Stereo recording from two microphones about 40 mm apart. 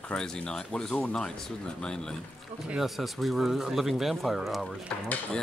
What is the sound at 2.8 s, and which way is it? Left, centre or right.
Speech, centre.